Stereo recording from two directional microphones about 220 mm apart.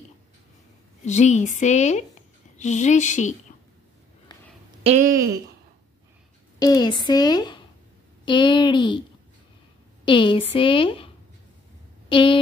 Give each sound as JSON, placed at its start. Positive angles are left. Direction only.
{"t": 1.0, "sound": "speech", "side_deg": 30}
{"t": 4.8, "sound": "a woman's voice", "side_deg": -35}
{"t": 6.6, "sound": "a woman's voice", "side_deg": 15}
{"t": 10.0, "sound": "a woman's voice", "side_deg": 20}
{"t": 12.1, "sound": "speech", "side_deg": 20}